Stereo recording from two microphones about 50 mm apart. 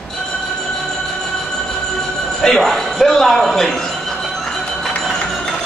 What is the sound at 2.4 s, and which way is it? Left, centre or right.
A man's voice, centre.